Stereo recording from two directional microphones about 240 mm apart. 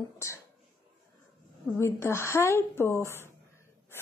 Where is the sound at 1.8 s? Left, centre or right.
Centre.